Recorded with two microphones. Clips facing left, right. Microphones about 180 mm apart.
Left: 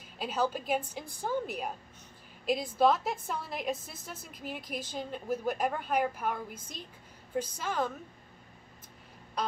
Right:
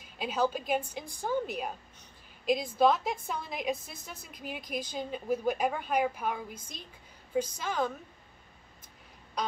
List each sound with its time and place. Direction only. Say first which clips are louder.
0.2 s a woman's voice: right 1 dB; 5° left (ahead or behind)
2.4 s a woman's voice: right 1 dB; 5° left (ahead or behind)